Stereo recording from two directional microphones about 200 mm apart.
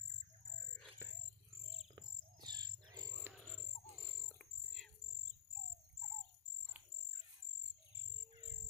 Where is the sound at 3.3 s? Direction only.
Centre (ahead or behind).